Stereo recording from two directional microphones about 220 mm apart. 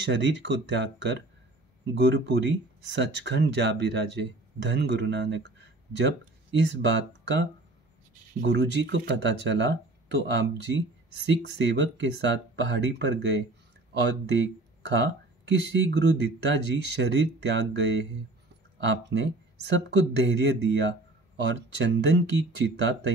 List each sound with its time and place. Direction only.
0.0 s speech: 55° right (ahead or behind)
6.6 s speech: 55° right (ahead or behind)
15.0 s speech: 55° right (ahead or behind)